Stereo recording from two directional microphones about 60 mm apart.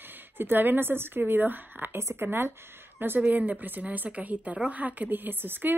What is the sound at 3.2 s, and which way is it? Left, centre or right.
A woman's voice, right.